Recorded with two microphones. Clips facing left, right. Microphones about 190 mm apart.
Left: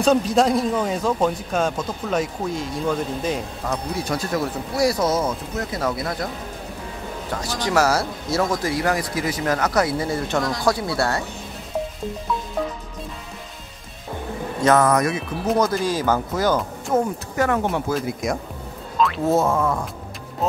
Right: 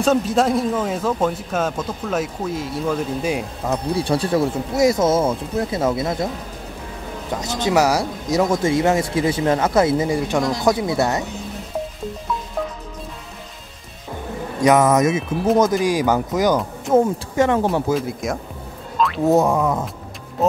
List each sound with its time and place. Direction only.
0.0 s speech: centre (ahead or behind)
3.9 s speech: 30° right (ahead or behind)
7.3 s speech: 20° right (ahead or behind)
14.6 s speech: 20° right (ahead or behind)
17.9 s speech: centre (ahead or behind)
18.9 s music: centre (ahead or behind)
19.2 s speech: 15° right (ahead or behind)